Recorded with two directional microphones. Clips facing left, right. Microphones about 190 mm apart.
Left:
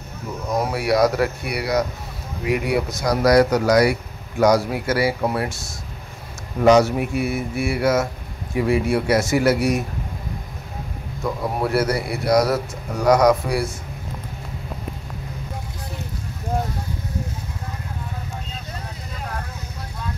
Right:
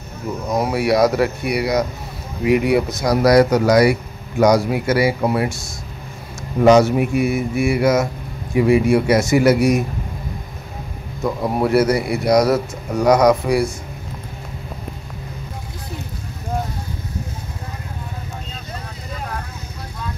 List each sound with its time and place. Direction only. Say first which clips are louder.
0.6 s speech: right 2 dB; 20° right (ahead or behind)
6.6 s speech: right 3 dB; 20° right (ahead or behind)
11.6 s speech: right 5 dB; 20° right (ahead or behind)